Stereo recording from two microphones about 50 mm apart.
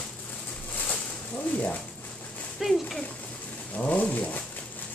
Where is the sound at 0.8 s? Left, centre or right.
Left.